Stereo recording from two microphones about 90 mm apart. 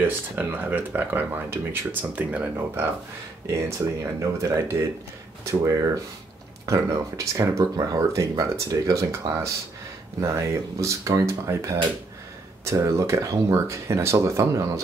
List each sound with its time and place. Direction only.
0.0 s speech: 20° right (ahead or behind)